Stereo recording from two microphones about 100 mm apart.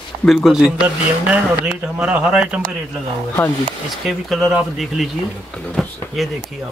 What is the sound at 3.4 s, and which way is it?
Speech, 20° left (ahead or behind).